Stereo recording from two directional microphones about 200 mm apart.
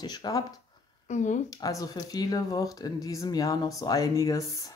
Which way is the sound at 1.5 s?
15° left (ahead or behind).